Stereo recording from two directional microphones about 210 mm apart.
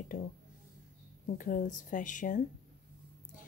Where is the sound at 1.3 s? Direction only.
40° left (ahead or behind).